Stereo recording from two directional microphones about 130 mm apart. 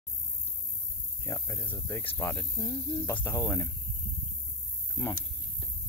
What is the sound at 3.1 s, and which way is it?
Speech, 20° left (ahead or behind).